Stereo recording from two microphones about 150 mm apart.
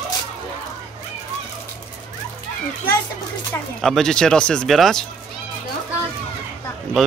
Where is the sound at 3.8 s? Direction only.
5° left (ahead or behind).